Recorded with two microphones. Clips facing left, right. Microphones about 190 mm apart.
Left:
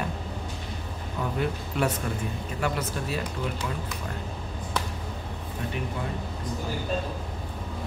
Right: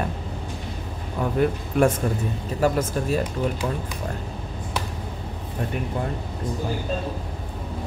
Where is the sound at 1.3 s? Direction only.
50° right (ahead or behind).